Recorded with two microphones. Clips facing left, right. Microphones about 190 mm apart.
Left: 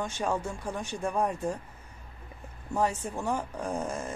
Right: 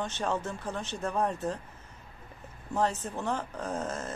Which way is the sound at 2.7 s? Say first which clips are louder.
Left 1 dB; 10° left (ahead or behind).